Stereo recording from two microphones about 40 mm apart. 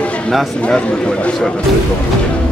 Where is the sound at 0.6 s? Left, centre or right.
Left.